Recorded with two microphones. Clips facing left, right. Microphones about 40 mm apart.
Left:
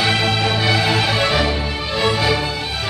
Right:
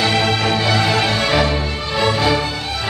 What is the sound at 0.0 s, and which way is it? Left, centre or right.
Music, centre.